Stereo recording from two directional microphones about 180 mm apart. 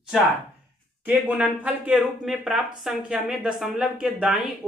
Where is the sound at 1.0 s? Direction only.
10° right (ahead or behind).